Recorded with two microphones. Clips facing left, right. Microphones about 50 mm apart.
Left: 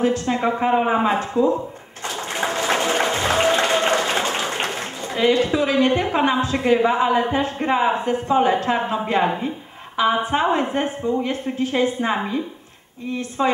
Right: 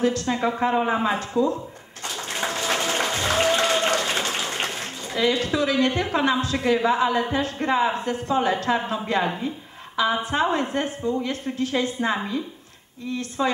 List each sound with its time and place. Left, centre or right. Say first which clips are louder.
0.0 s a woman's voice: left 3 dB; left
2.0 s applause: left 4 dB; left
9.9 s a woman's voice: left 3 dB; left